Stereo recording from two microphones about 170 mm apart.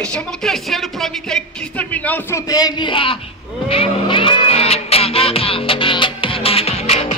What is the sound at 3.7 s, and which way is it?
Music, 30° left (ahead or behind).